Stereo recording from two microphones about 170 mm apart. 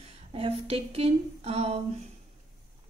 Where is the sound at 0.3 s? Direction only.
35° right (ahead or behind).